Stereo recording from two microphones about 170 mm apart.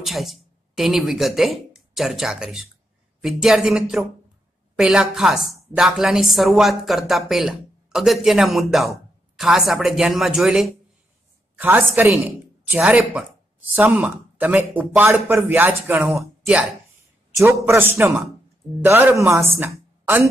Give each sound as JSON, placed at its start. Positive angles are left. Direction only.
{"t": 0.0, "sound": "a woman's voice", "side_deg": 0}